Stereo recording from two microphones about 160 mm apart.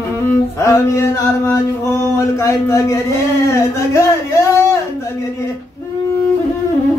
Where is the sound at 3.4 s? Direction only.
20° left (ahead or behind).